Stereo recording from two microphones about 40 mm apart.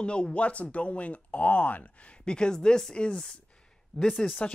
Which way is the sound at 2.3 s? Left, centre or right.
Left.